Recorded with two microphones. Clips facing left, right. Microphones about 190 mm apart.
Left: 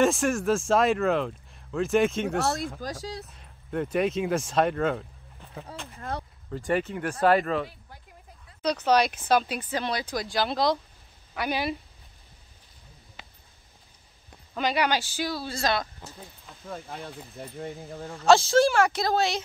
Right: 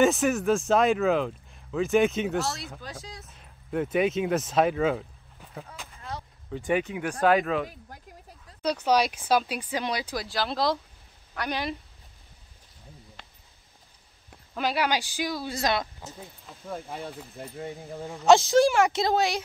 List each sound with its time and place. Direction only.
0.0 s speech: 5° right (ahead or behind)
2.8 s speech: 40° left (ahead or behind)
3.3 s speech: centre (ahead or behind)
5.9 s a sound: 55° left (ahead or behind)
6.5 s speech: centre (ahead or behind)
8.6 s speech: 10° right (ahead or behind); by 11.7 s 5° left (ahead or behind)
14.3 s a sound: 5° right (ahead or behind)
15.0 s speech: 15° right (ahead or behind)
16.1 s speech: centre (ahead or behind)
17.9 s speech: 15° right (ahead or behind)